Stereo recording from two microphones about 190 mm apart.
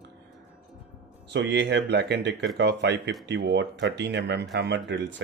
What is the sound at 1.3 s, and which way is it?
Speech, 65° right (ahead or behind).